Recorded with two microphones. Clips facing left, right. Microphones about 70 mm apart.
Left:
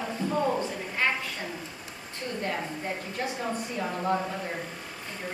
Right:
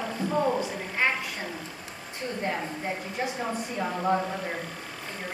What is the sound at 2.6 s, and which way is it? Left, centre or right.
A woman's voice, centre.